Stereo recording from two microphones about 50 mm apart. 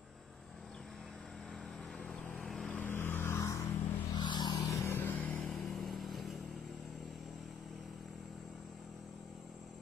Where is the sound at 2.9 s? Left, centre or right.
Left.